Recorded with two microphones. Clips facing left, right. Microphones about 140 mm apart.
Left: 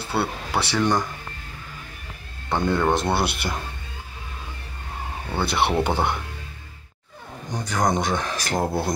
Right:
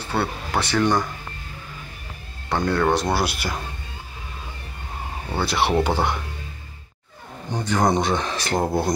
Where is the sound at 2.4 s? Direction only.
Centre (ahead or behind).